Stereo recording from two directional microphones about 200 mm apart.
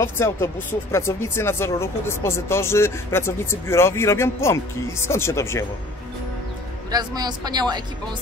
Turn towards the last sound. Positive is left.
turn(degrees=-20)  # may be behind; listen again after turning